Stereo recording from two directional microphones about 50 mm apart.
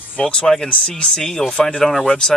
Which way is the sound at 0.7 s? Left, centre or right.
Left.